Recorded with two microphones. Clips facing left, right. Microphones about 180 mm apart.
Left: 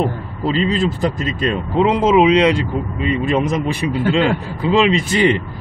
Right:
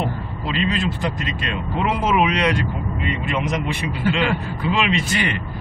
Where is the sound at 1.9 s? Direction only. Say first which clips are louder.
Left 7 dB; 25° left (ahead or behind).